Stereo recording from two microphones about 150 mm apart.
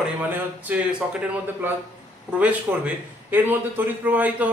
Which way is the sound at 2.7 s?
15° right (ahead or behind).